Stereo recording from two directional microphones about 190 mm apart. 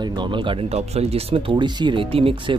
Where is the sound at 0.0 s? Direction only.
25° right (ahead or behind).